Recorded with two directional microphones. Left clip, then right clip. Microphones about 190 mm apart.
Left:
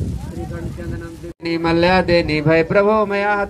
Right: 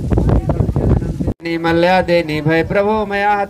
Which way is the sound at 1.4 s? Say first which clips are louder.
Right 2 dB; 60° right (ahead or behind).